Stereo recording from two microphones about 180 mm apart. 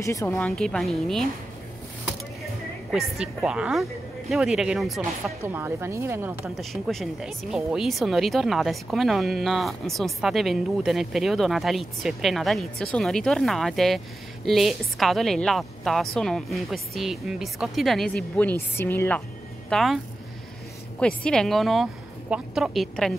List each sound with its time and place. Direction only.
0.0 s speech: 15° left (ahead or behind)
0.4 s speech: 5° left (ahead or behind)
2.9 s speech: 5° right (ahead or behind)
5.4 s speech: 15° right (ahead or behind)
6.6 s speech: centre (ahead or behind)
21.0 s speech: 5° left (ahead or behind)